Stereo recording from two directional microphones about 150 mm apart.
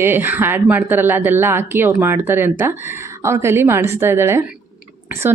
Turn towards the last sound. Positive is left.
turn(degrees=-15)  # may be behind; listen again after turning